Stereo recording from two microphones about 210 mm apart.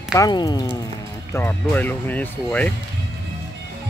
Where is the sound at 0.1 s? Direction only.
20° left (ahead or behind).